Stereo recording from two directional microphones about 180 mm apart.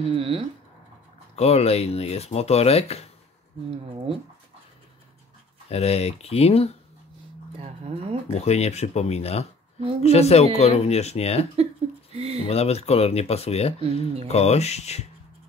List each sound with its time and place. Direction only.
0.0 s speech: 30° right (ahead or behind)
1.3 s speech: 35° left (ahead or behind)
3.9 s speech: 30° right (ahead or behind)
5.7 s speech: 35° left (ahead or behind)
7.5 s a sound: 35° right (ahead or behind)
8.3 s speech: 35° left (ahead or behind)
12.2 s speech: 35° right (ahead or behind)
12.4 s speech: 35° left (ahead or behind)